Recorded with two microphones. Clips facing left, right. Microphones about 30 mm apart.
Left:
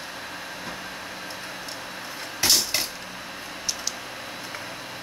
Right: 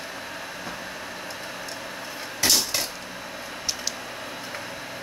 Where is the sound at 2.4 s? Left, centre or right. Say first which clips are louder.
Even; centre.